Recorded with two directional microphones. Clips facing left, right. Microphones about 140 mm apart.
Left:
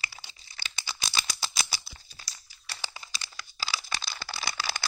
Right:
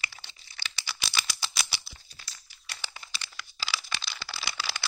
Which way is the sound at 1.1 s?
40° left (ahead or behind).